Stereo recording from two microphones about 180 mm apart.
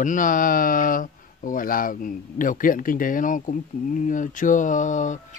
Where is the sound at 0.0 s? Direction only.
45° left (ahead or behind).